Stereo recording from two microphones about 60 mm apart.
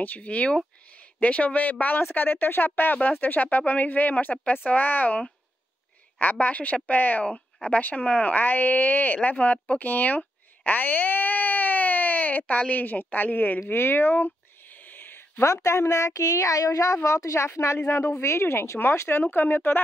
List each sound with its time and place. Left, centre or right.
0.0 s speech: left
6.4 s speech: left
13.7 s a sound: left
15.4 s a woman's voice: left